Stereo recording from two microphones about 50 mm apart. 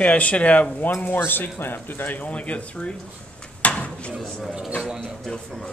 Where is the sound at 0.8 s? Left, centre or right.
Left.